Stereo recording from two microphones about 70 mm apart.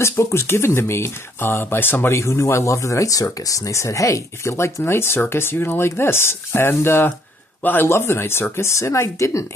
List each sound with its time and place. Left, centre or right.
0.0 s speech: left
2.1 s speech: left